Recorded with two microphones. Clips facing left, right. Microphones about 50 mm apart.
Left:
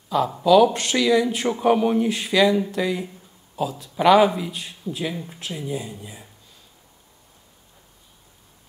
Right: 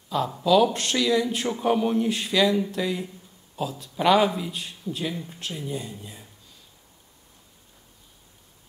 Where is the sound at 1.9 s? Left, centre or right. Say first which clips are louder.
Left 3 dB; centre.